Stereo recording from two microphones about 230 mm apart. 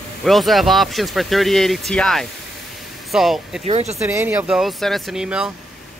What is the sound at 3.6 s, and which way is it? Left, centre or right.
Speech, right.